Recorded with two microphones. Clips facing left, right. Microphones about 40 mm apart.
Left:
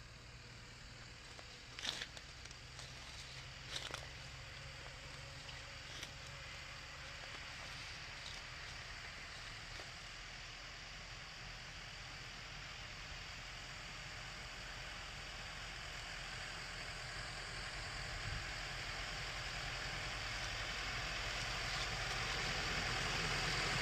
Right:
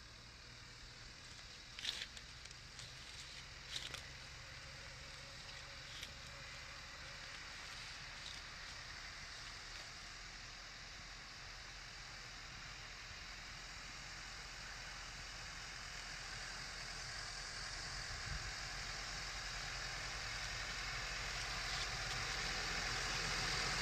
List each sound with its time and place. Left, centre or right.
15.6 s vehicle: left